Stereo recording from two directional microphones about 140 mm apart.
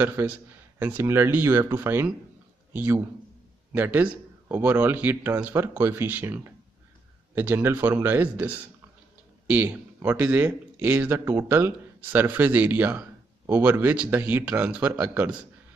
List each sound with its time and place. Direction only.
0.0 s a man's voice: 15° right (ahead or behind)